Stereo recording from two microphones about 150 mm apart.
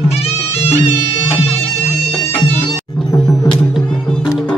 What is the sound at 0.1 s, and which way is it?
Music, 45° left (ahead or behind).